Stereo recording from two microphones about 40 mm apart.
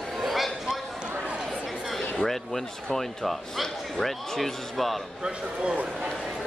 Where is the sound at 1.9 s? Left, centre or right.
Centre.